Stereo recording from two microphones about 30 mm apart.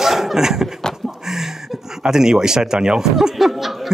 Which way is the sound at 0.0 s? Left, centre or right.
Centre.